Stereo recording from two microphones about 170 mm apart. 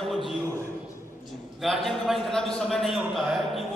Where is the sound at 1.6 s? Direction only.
Centre (ahead or behind).